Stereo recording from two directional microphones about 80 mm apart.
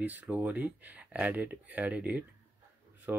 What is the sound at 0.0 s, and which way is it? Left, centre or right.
Speech, right.